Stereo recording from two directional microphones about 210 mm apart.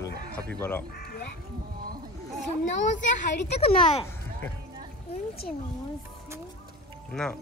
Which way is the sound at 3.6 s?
30° left (ahead or behind).